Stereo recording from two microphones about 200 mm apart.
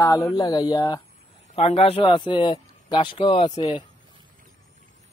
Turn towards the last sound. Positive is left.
turn(degrees=20)  # may be behind; listen again after turning